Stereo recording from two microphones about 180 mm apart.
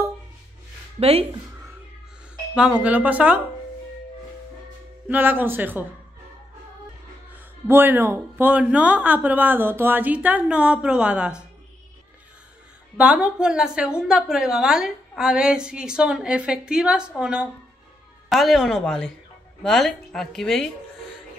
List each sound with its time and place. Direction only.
0.9 s speech: 35° right (ahead or behind)
2.5 s speech: 5° right (ahead or behind)
5.0 s speech: 10° right (ahead or behind)
7.3 s speech: 10° right (ahead or behind)
12.9 s a woman's voice: 5° right (ahead or behind)